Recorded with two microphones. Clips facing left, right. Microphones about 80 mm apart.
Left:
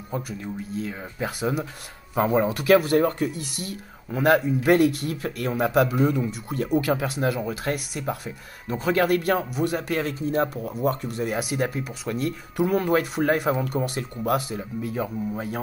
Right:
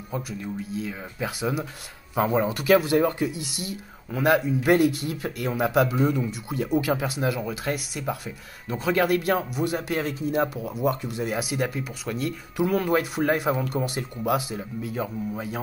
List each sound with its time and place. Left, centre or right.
0.1 s speech: centre